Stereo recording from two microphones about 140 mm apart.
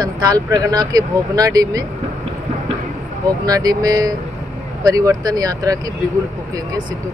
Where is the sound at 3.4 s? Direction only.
25° right (ahead or behind).